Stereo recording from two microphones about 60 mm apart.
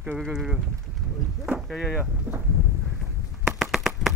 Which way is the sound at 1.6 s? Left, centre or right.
Centre.